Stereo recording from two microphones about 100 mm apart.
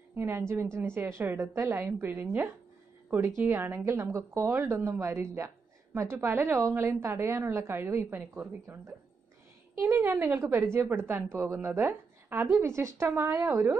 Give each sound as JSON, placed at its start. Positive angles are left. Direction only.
{"t": 0.1, "sound": "a woman's voice", "side_deg": -25}
{"t": 9.8, "sound": "a woman's voice", "side_deg": -30}